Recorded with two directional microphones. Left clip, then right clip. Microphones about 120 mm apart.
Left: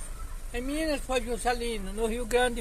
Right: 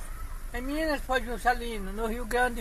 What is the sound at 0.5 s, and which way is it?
Speech, 20° left (ahead or behind).